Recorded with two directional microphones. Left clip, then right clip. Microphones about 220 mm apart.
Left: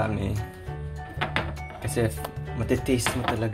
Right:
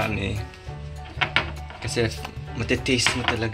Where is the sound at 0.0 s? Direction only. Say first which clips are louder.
Right 2 dB; centre (ahead or behind).